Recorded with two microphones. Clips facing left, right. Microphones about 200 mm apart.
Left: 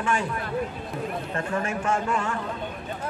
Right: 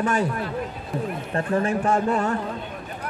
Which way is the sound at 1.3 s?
35° right (ahead or behind).